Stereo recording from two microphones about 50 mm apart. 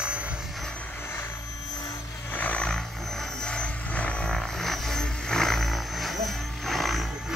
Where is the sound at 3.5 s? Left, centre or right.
Left.